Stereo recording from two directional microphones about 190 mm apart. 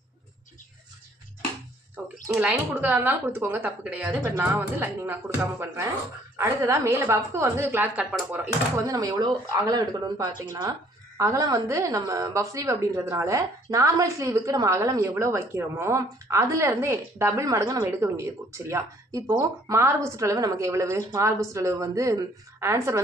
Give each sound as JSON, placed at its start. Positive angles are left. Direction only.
{"t": 2.2, "sound": "a woman's voice", "side_deg": -5}
{"t": 8.7, "sound": "a woman's voice", "side_deg": -20}